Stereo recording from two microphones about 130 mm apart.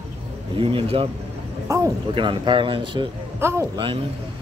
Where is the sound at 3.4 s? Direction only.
20° right (ahead or behind).